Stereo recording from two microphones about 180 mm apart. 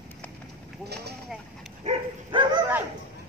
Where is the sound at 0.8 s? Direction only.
65° right (ahead or behind).